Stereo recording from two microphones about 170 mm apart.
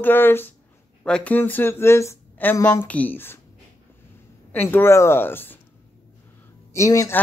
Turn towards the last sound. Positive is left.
turn(degrees=20)  # may be behind; listen again after turning